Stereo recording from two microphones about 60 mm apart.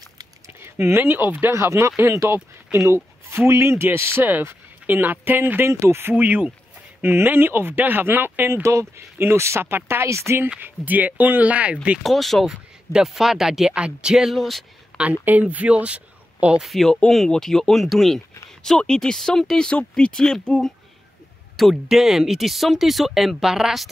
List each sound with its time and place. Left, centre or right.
0.6 s speech: right
1.6 s speech: right
5.7 s speech: right
6.1 s speech: right
8.6 s speech: right
10.6 s speech: right
12.0 s speech: centre
14.9 s a sound: centre
15.2 s speech: right
16.5 s speech: centre
21.8 s speech: centre